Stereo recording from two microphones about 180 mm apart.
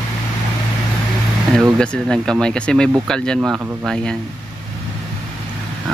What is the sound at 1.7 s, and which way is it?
Speech, 5° left (ahead or behind).